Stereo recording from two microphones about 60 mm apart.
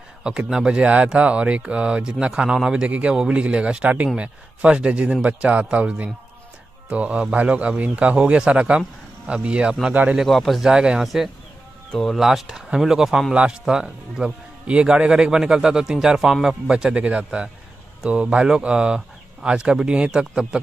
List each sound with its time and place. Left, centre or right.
0.5 s a man's voice: centre
10.1 s speech: centre
10.6 s speech: centre
11.9 s speech: centre
12.2 s speech: centre